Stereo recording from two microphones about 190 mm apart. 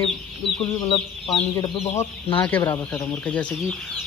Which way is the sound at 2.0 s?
10° left (ahead or behind).